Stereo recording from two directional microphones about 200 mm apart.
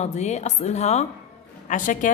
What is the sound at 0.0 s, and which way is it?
A woman's voice, 35° left (ahead or behind).